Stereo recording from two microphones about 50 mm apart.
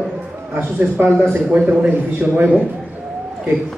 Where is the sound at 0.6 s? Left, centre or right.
Right.